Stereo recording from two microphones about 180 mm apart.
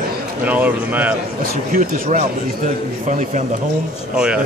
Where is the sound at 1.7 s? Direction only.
45° right (ahead or behind).